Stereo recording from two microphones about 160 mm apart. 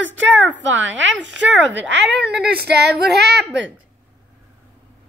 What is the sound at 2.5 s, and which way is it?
Female singing, 90° right.